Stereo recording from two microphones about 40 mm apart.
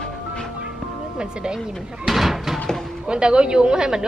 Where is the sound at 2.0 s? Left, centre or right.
Centre.